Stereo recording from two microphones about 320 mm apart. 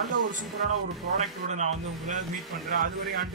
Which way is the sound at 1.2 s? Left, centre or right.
Right.